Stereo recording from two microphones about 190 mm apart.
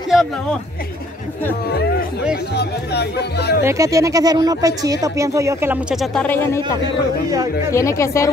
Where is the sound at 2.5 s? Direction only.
60° left (ahead or behind).